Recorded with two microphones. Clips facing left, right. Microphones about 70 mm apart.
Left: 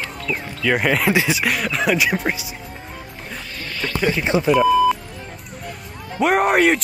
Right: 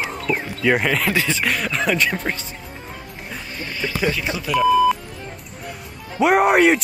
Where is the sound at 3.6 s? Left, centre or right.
Centre.